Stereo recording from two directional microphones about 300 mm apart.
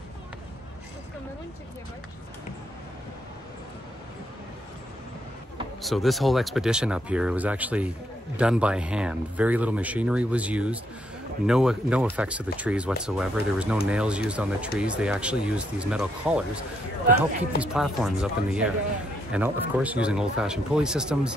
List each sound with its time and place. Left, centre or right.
5.8 s speech: centre
17.6 s speech: centre